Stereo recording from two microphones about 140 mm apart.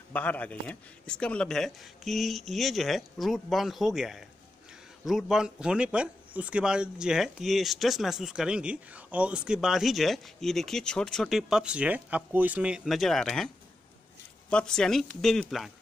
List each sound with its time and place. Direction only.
0.1 s speech: 10° left (ahead or behind)
14.5 s speech: 5° left (ahead or behind)